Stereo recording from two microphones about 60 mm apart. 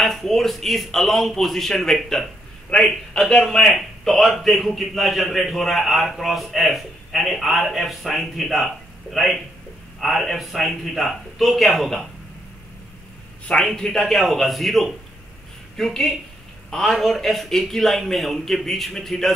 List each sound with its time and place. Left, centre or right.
0.0 s a man's voice: centre
3.2 s a man's voice: centre
13.7 s a man's voice: centre